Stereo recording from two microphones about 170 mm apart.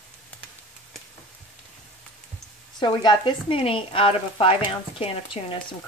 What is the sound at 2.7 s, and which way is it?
Speech, 25° left (ahead or behind).